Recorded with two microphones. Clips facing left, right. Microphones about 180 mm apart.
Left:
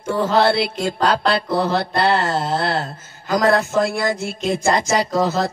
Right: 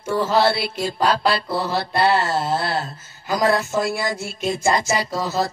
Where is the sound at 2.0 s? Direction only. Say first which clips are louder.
Right 2 dB; 55° left (ahead or behind).